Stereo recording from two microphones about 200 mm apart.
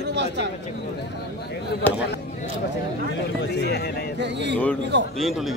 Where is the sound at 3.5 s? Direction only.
55° left (ahead or behind).